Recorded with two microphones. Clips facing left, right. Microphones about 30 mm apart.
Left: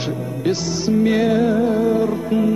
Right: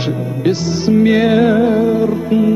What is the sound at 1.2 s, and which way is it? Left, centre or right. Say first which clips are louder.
Music: right 5 dB; right.